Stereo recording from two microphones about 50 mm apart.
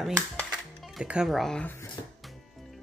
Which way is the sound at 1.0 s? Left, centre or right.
Right.